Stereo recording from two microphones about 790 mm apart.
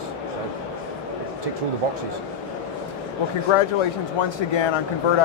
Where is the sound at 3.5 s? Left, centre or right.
Left.